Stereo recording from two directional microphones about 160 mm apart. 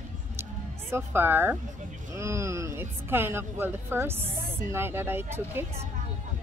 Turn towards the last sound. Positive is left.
turn(degrees=-15)  # may be behind; listen again after turning